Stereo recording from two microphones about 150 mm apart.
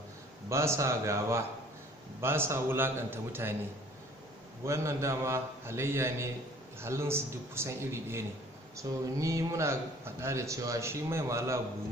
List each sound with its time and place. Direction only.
0.5 s speech: 20° right (ahead or behind)
4.6 s speech: 20° right (ahead or behind)